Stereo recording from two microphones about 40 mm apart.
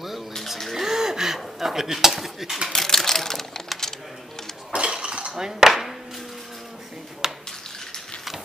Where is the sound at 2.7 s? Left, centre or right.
Centre.